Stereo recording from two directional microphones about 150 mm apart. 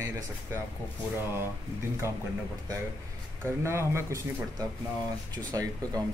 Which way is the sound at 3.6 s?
15° right (ahead or behind).